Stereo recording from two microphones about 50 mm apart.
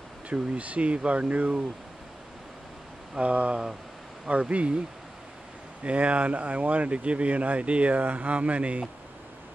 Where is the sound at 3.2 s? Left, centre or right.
Right.